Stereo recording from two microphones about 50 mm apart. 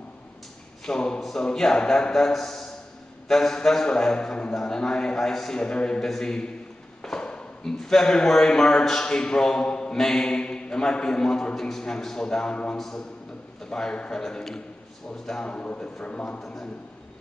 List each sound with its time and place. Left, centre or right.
0.8 s a man's voice: centre
7.0 s a sound: centre
7.8 s a man's voice: centre
12.7 s a man's voice: centre
13.7 s a man's voice: centre
15.4 s a man's voice: left